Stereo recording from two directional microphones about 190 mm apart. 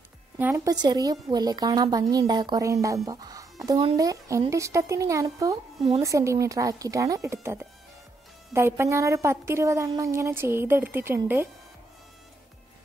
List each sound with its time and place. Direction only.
0.4 s a woman's voice: 15° right (ahead or behind)
8.5 s a woman's voice: 15° right (ahead or behind)